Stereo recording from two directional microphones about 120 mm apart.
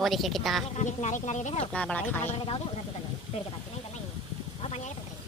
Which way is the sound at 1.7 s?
10° left (ahead or behind).